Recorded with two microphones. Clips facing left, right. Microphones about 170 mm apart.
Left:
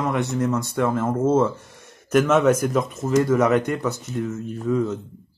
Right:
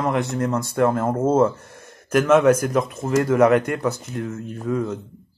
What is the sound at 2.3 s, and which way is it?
Speech, centre (ahead or behind).